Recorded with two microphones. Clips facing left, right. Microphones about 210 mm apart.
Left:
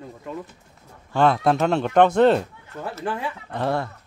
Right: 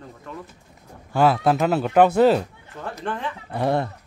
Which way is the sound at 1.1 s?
5° right (ahead or behind).